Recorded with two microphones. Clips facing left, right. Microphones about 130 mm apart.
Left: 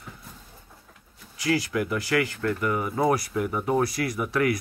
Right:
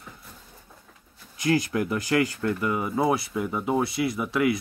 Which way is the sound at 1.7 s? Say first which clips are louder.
Right 1 dB; 25° right (ahead or behind).